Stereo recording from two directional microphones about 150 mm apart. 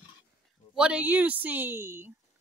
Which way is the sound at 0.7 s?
5° right (ahead or behind).